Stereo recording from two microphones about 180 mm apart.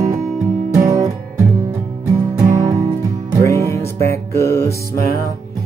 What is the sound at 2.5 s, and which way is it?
Music, 20° right (ahead or behind).